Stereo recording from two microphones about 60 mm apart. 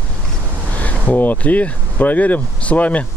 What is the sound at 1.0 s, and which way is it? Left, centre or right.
Speech, left.